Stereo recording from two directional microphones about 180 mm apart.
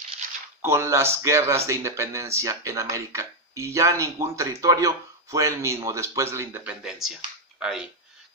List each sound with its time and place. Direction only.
0.6 s speech: 15° right (ahead or behind)